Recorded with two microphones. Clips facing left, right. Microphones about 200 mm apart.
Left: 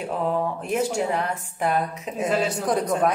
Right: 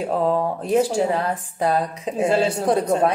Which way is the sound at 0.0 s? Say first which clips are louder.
Right 4 dB; 40° right (ahead or behind).